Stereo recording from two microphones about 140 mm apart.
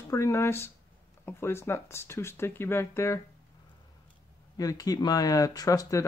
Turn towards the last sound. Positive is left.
turn(degrees=25)  # may be behind; listen again after turning